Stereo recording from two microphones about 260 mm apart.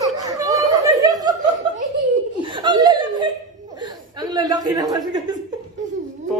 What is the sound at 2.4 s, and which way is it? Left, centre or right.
Chuckle, centre.